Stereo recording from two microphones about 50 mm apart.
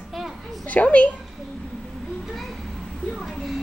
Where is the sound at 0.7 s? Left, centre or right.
Left.